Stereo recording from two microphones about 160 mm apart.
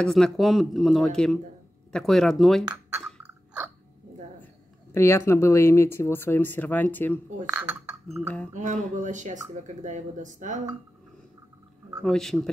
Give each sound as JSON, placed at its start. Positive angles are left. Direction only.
{"t": 0.0, "sound": "a man's voice", "side_deg": 5}
{"t": 3.3, "sound": "cough", "side_deg": -10}
{"t": 4.9, "sound": "speech", "side_deg": 15}
{"t": 7.4, "sound": "speech", "side_deg": -10}
{"t": 8.5, "sound": "speech", "side_deg": -50}
{"t": 12.0, "sound": "a man's voice", "side_deg": 5}